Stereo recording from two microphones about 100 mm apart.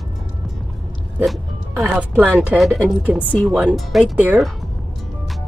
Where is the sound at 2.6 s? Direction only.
Centre (ahead or behind).